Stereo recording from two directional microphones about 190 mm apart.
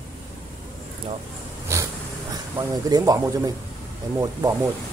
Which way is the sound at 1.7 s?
15° right (ahead or behind).